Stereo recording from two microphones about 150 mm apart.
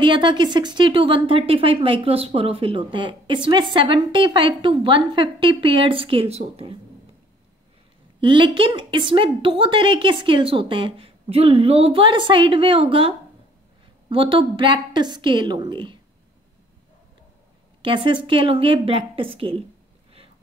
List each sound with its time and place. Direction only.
0.0 s a woman's voice: 30° right (ahead or behind)
8.2 s a woman's voice: 35° right (ahead or behind)
17.8 s a woman's voice: 35° right (ahead or behind)